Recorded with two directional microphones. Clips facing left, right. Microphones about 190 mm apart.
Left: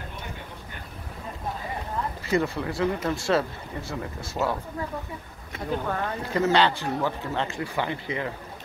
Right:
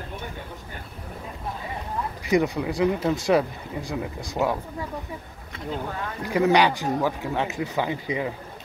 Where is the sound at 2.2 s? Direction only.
15° right (ahead or behind).